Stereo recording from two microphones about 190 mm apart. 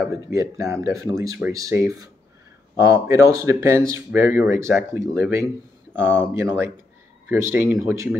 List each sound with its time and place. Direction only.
0.0 s speech: 15° right (ahead or behind)